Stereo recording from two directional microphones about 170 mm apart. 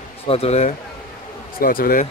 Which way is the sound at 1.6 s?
60° left (ahead or behind).